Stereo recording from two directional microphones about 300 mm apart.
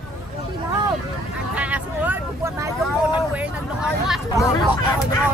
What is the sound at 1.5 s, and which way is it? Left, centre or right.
Vehicle, centre.